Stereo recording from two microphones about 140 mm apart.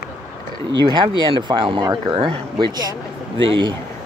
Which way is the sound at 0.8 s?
30° right (ahead or behind).